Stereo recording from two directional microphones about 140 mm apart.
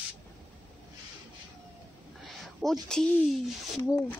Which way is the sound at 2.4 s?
Centre (ahead or behind).